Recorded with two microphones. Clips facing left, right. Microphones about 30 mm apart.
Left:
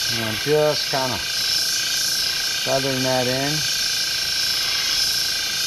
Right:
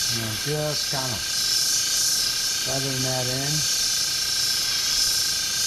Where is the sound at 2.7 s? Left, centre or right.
Left.